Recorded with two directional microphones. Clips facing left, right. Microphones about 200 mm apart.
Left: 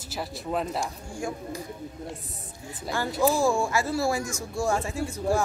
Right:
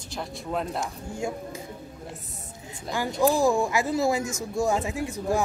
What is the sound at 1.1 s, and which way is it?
Speech, 25° right (ahead or behind).